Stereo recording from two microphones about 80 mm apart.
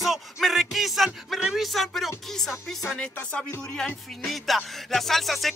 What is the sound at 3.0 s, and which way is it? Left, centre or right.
Speech, centre.